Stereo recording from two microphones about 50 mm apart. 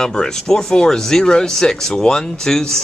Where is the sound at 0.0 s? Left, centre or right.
Centre.